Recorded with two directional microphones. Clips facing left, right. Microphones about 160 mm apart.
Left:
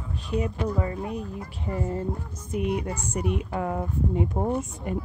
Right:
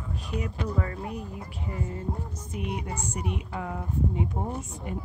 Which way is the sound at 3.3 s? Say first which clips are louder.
Left 6 dB; 50° left (ahead or behind).